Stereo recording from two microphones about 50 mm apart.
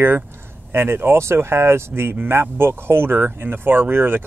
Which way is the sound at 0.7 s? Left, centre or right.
Right.